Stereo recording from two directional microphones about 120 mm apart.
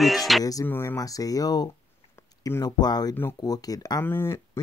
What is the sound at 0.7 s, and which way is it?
Speech, 20° left (ahead or behind).